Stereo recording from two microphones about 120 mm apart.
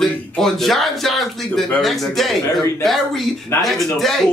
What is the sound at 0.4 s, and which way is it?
Speech, centre (ahead or behind).